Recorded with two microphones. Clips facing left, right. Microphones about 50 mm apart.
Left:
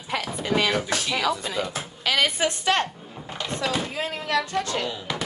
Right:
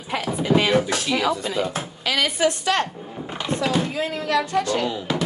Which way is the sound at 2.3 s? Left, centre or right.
Left.